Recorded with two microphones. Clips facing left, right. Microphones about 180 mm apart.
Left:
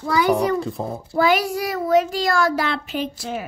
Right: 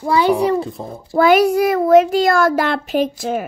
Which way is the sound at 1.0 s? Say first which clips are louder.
Right 7 dB; 55° right (ahead or behind).